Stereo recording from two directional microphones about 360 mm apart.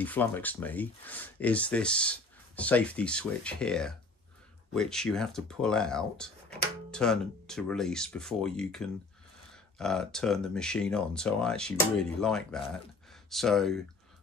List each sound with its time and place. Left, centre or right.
0.0 s speech: centre